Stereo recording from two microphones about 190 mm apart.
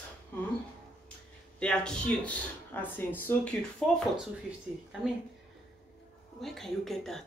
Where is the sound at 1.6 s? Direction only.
5° left (ahead or behind).